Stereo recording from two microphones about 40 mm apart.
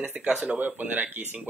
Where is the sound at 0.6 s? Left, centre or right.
Right.